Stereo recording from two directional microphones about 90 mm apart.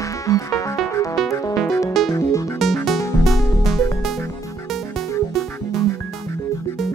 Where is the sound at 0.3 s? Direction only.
40° left (ahead or behind).